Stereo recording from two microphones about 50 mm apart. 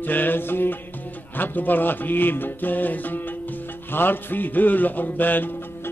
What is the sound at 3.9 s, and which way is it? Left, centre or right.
A man's voice, left.